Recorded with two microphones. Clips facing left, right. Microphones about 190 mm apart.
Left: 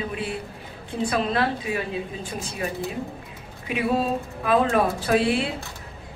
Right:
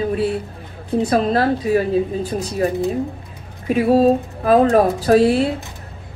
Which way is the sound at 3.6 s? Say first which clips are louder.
Right 10 dB; 40° right (ahead or behind).